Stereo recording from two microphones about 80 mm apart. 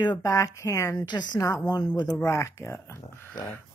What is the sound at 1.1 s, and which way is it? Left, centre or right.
Speech, left.